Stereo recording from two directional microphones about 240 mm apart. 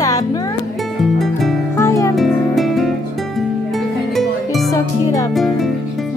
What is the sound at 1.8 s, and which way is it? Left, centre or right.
Music, centre.